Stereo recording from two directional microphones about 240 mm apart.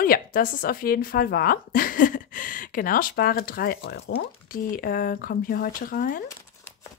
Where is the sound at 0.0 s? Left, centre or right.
Left.